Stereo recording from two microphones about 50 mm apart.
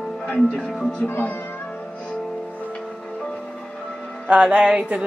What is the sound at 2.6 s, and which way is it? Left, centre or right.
Music, left.